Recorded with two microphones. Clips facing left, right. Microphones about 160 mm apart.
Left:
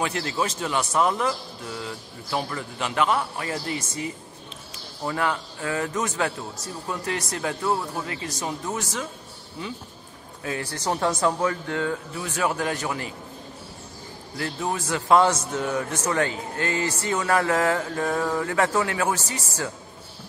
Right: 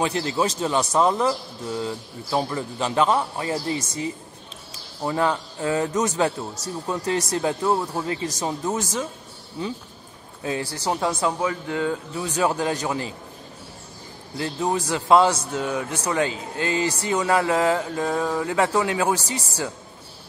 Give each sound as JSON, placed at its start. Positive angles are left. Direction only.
{"t": 0.0, "sound": "a man's voice", "side_deg": -25}
{"t": 10.7, "sound": "speech", "side_deg": -10}
{"t": 14.3, "sound": "a man's voice", "side_deg": -20}